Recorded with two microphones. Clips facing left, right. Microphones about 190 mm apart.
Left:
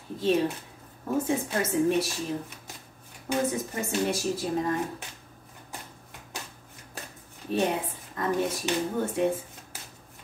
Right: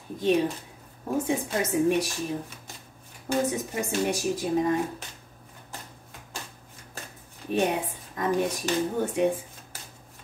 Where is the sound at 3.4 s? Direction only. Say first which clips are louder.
Right 1 dB; 15° right (ahead or behind).